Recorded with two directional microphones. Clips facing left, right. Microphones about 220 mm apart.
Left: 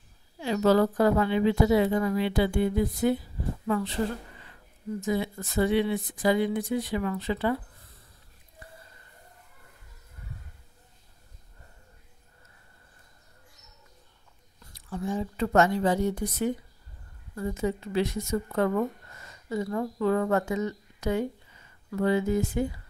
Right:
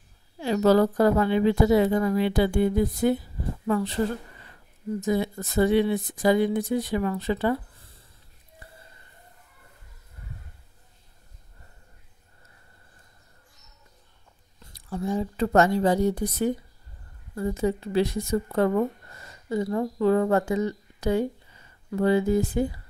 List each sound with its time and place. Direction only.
0.4 s speech: 40° right (ahead or behind)
5.0 s speech: 40° right (ahead or behind)
14.7 s speech: 35° right (ahead or behind)